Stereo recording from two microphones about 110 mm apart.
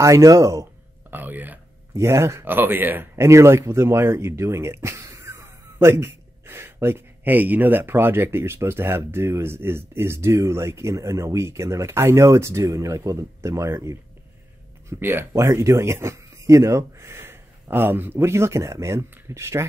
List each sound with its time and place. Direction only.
0.0 s speech: 30° right (ahead or behind)
1.1 s speech: 15° right (ahead or behind)